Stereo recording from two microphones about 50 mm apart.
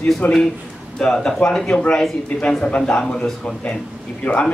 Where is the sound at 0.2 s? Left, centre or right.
Left.